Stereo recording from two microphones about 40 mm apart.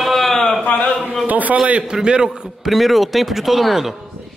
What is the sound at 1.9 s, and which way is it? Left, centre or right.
Speech, centre.